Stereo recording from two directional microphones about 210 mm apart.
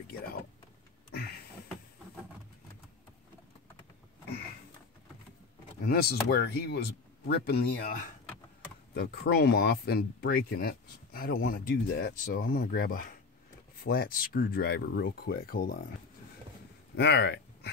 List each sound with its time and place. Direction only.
1.1 s a sound: 50° left (ahead or behind)
5.9 s speech: 50° left (ahead or behind)
8.9 s speech: 50° left (ahead or behind)
16.9 s speech: 50° left (ahead or behind)